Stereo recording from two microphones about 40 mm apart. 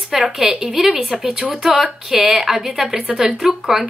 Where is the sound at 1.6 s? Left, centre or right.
Centre.